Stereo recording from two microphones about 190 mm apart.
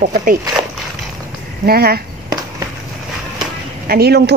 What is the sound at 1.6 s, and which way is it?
Speech, 55° right (ahead or behind).